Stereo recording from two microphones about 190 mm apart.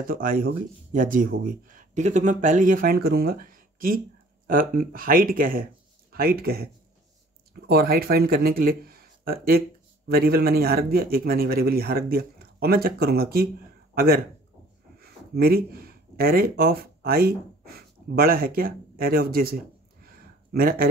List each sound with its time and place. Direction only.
0.0 s speech: 45° right (ahead or behind)